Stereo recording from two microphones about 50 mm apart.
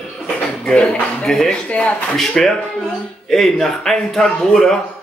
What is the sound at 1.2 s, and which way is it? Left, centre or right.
A man's voice, centre.